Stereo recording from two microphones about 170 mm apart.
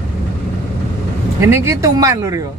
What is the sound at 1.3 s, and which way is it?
Speech, 15° right (ahead or behind).